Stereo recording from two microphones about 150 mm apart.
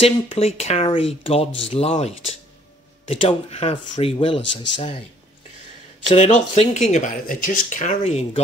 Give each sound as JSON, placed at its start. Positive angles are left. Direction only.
{"t": 0.0, "sound": "speech", "side_deg": 40}
{"t": 6.0, "sound": "speech", "side_deg": 50}